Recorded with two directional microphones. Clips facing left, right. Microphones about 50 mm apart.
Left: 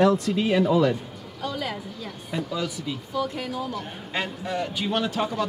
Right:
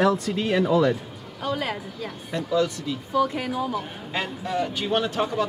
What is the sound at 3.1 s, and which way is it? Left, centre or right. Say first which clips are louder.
Speech: right 6 dB; centre.